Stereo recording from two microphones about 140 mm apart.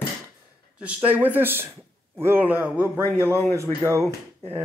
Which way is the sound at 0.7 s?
10° right (ahead or behind).